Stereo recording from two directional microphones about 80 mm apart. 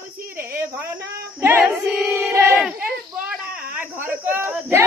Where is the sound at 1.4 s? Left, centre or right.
Right.